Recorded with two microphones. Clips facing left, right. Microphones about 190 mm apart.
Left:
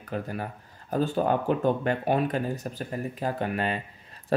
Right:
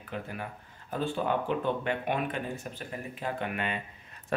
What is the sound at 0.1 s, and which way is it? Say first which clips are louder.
Speech: left 5 dB; 40° left (ahead or behind).